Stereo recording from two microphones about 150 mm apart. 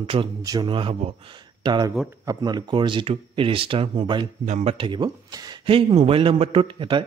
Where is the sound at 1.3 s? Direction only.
30° right (ahead or behind).